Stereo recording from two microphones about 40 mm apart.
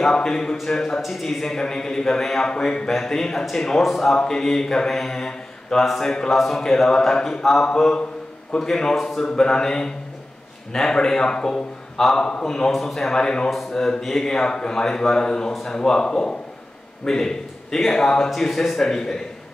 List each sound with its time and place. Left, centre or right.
0.0 s a man's voice: centre
4.2 s a man's voice: centre
9.3 s a man's voice: centre
12.4 s a man's voice: centre
13.1 s a man's voice: centre